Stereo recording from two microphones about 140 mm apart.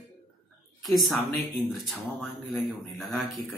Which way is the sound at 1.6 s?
Centre (ahead or behind).